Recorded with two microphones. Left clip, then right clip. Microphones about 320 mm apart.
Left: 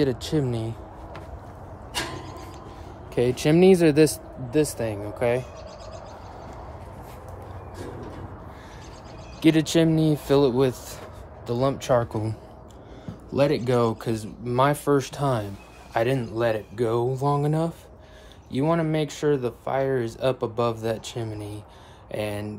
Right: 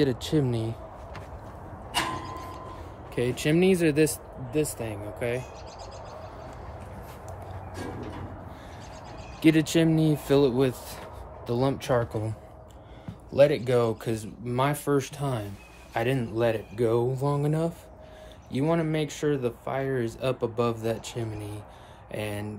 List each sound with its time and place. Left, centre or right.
0.0 s speech: centre
3.2 s speech: centre
9.4 s speech: centre